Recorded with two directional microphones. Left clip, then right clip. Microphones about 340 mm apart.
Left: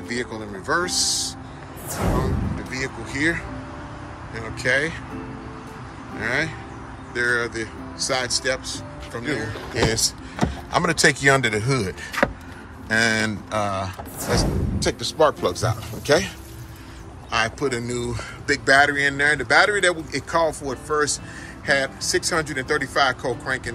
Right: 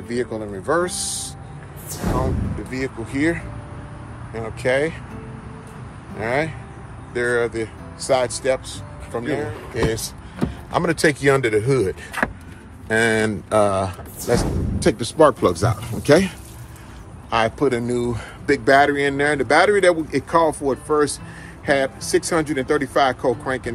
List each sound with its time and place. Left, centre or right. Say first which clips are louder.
0.1 s speech: right 4 dB; centre
2.7 s speech: right 2 dB; centre
6.1 s speech: right 2 dB; centre
9.8 s speech: left 2 dB; centre
14.8 s speech: right 4 dB; right
17.3 s speech: right 4 dB; centre